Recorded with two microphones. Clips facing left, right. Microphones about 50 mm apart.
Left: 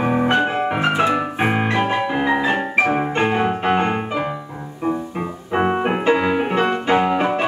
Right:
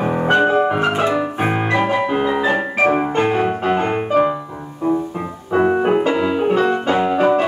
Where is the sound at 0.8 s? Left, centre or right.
Left.